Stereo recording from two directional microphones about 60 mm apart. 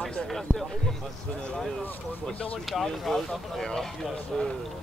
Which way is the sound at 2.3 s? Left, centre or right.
Left.